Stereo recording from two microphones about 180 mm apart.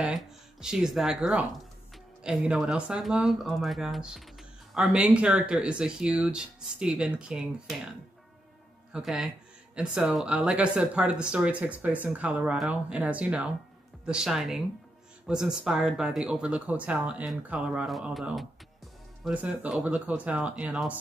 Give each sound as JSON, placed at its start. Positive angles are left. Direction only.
{"t": 0.0, "sound": "speech", "side_deg": -5}
{"t": 8.9, "sound": "speech", "side_deg": 0}